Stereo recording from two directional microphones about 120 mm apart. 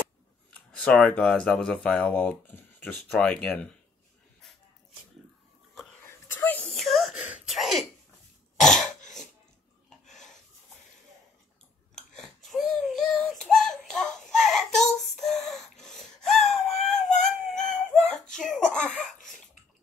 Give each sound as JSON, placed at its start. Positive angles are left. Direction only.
{"t": 0.5, "sound": "speech", "side_deg": 10}
{"t": 6.0, "sound": "a sound", "side_deg": 20}
{"t": 6.7, "sound": "whimper", "side_deg": 0}
{"t": 7.2, "sound": "gasp", "side_deg": -10}
{"t": 8.5, "sound": "throat clearing", "side_deg": 5}
{"t": 10.0, "sound": "a sound", "side_deg": 90}
{"t": 12.1, "sound": "a sound", "side_deg": 5}
{"t": 15.8, "sound": "wail", "side_deg": 5}
{"t": 18.7, "sound": "laughter", "side_deg": 5}